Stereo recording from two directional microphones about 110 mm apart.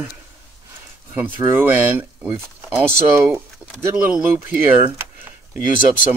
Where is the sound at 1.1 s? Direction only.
15° right (ahead or behind).